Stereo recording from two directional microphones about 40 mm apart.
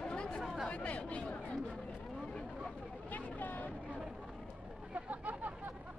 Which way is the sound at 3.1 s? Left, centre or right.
Left.